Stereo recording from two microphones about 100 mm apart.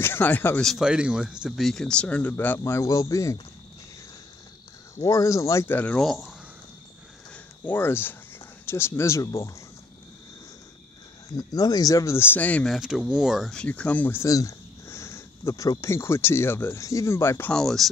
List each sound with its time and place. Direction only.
0.0 s speech: 20° left (ahead or behind)
0.6 s speech: 5° left (ahead or behind)
0.8 s speech: 10° right (ahead or behind)
1.7 s speech: 5° left (ahead or behind); by 3.3 s 35° left (ahead or behind)
4.9 s speech: 30° left (ahead or behind)
5.8 s speech: 15° left (ahead or behind)
6.0 s speech: 5° left (ahead or behind)
7.6 s speech: 20° left (ahead or behind)
11.3 s speech: 40° left (ahead or behind); by 12.6 s 15° left (ahead or behind)
12.6 s speech: centre (ahead or behind)
13.5 s speech: 10° left (ahead or behind)
14.2 s speech: 35° left (ahead or behind)
17.5 s speech: 5° left (ahead or behind)